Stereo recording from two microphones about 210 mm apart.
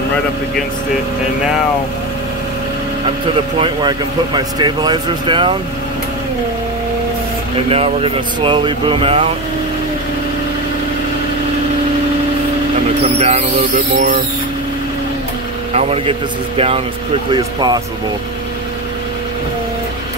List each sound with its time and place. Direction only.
3.5 s speech: 25° right (ahead or behind)
7.7 s speech: 25° right (ahead or behind)
13.2 s music: 30° right (ahead or behind)
15.7 s speech: 30° right (ahead or behind)